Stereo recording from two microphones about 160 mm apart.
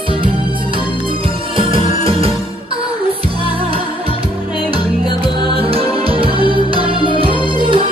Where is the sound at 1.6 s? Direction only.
35° right (ahead or behind).